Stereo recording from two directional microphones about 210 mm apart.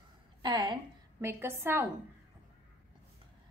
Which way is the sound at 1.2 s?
10° right (ahead or behind).